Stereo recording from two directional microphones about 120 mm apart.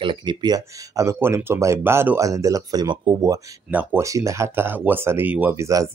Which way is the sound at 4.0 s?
25° right (ahead or behind).